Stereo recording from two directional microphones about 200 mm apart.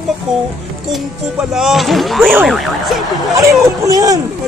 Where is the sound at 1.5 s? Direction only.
Centre (ahead or behind).